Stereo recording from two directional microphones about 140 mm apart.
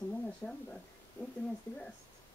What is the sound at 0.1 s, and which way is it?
Speech, 10° left (ahead or behind).